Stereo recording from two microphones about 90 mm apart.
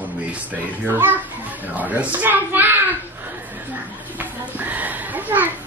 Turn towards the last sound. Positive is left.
turn(degrees=-20)  # may be behind; listen again after turning